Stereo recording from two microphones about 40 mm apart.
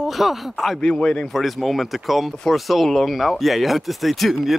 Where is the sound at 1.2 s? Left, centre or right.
Centre.